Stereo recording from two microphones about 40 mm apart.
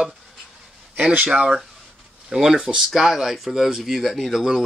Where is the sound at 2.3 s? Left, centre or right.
Centre.